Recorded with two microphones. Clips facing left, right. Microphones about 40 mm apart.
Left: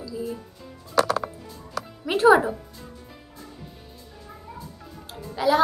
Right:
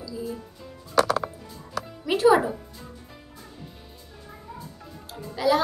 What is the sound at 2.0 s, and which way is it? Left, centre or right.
Speech, centre.